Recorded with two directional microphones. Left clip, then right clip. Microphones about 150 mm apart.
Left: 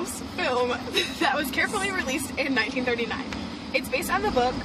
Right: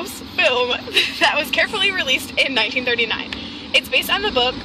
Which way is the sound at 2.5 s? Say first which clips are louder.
Right 7 dB; 5° left (ahead or behind).